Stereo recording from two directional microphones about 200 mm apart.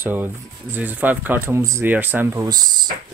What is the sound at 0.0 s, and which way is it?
Speech, 10° right (ahead or behind).